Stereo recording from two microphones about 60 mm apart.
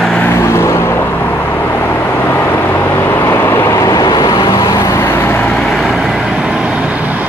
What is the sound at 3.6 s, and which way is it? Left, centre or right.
Vehicle, left.